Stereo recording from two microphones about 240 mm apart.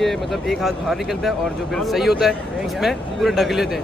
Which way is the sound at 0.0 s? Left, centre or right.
Centre.